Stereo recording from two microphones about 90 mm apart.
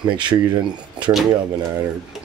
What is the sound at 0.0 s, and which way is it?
Speech, 60° right (ahead or behind).